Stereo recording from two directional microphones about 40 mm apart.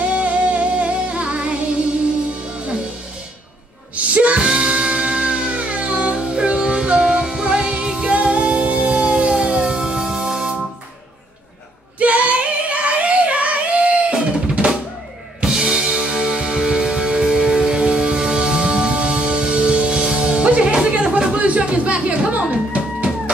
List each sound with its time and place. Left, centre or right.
0.0 s music: right
3.9 s music: right
4.4 s music: centre
12.0 s music: right; by 17.7 s centre
17.7 s music: right
21.2 s a sound: right